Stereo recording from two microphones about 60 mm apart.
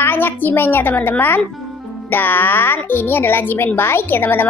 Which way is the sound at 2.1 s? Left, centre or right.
Left.